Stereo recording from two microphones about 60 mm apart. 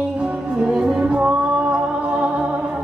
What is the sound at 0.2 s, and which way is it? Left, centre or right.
Music, centre.